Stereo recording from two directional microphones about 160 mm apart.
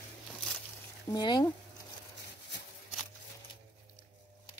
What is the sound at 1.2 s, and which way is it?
Speech, 25° left (ahead or behind).